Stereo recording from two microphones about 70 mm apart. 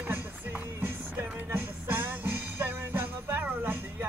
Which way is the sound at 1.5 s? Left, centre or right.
Right.